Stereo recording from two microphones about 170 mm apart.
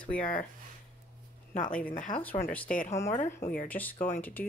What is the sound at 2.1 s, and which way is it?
Speech, 10° left (ahead or behind).